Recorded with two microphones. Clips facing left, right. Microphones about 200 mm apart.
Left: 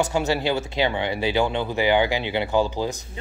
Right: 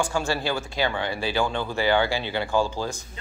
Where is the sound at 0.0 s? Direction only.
20° left (ahead or behind).